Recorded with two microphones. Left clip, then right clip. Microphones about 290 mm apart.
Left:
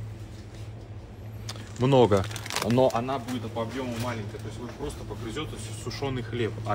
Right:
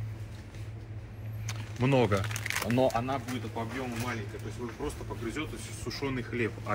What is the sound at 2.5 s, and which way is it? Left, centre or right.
Speech, left.